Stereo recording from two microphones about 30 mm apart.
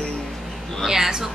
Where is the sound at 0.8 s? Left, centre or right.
Centre.